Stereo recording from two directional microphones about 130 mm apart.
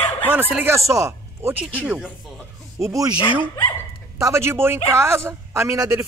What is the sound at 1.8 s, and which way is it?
Speech, 5° right (ahead or behind).